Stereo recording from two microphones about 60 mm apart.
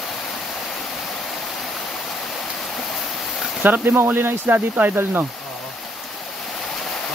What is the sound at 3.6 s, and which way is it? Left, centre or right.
Speech, right.